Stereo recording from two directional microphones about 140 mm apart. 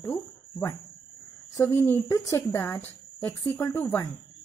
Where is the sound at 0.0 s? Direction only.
20° left (ahead or behind).